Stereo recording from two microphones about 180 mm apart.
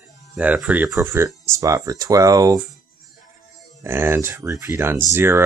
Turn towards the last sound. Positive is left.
turn(degrees=-15)  # may be behind; listen again after turning